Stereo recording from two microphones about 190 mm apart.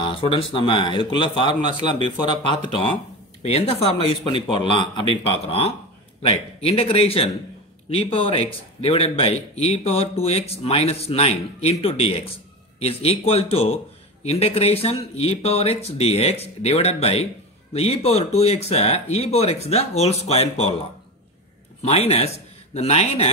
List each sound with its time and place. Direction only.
0.0 s a man's voice: 25° left (ahead or behind)
21.8 s speech: 35° left (ahead or behind)